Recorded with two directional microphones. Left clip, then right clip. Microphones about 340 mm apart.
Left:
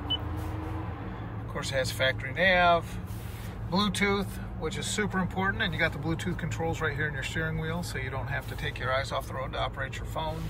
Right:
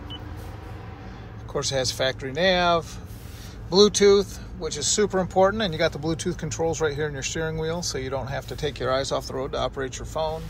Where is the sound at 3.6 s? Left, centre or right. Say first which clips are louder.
Right 11 dB; centre.